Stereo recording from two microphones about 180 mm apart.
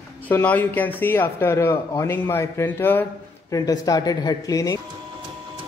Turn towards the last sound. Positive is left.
turn(degrees=20)  # may be behind; listen again after turning